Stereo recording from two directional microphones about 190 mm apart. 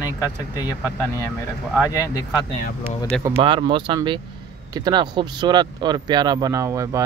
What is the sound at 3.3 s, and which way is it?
Speech, 25° right (ahead or behind).